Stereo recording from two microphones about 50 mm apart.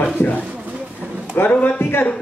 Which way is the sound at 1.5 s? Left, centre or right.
Left.